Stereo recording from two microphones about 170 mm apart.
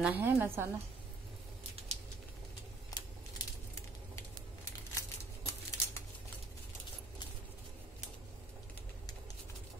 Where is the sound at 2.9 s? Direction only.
20° left (ahead or behind).